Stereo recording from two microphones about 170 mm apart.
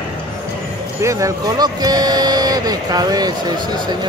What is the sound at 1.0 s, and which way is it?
Speech, 20° right (ahead or behind).